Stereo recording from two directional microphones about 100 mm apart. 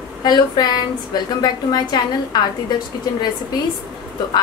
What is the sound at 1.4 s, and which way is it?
A woman's voice, 45° left (ahead or behind).